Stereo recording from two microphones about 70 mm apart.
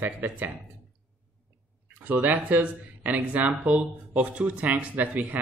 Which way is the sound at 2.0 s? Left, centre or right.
Right.